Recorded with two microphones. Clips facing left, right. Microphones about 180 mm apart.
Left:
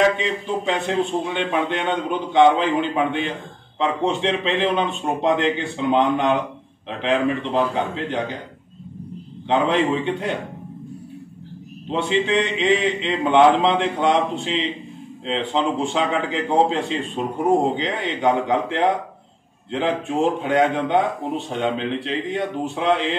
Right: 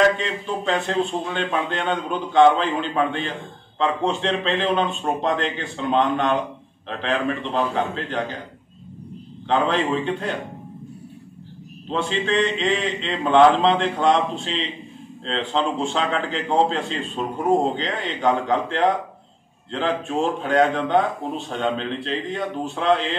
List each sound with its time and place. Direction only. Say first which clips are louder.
0.2 s a man's voice: left 2 dB; 15° left (ahead or behind)
9.5 s a man's voice: left 2 dB; 20° left (ahead or behind)
11.9 s a man's voice: left 3 dB; 15° left (ahead or behind)